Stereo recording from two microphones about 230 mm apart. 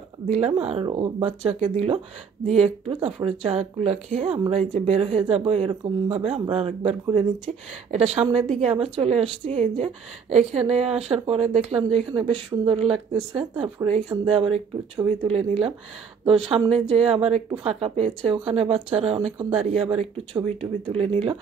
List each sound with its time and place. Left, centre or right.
0.3 s speech: right